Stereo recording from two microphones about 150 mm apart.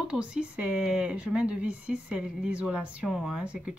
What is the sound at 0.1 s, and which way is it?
Speech, 5° right (ahead or behind).